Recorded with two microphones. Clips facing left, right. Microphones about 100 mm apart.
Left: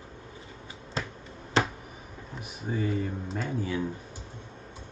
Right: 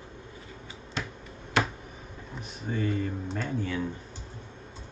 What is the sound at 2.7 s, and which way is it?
Speech, 5° left (ahead or behind).